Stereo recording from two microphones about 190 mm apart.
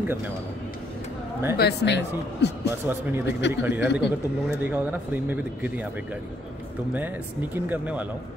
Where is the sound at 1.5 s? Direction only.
60° left (ahead or behind).